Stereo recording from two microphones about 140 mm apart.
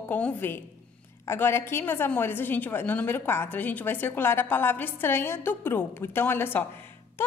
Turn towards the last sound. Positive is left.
turn(degrees=15)  # may be behind; listen again after turning